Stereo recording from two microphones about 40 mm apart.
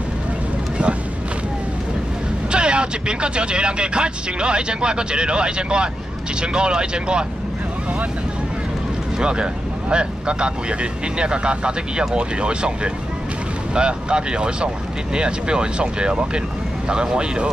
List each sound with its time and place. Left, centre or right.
2.5 s speech: right
9.2 s speech: right